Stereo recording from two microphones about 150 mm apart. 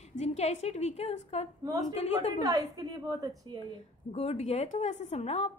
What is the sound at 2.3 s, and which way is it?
Speech, 25° right (ahead or behind).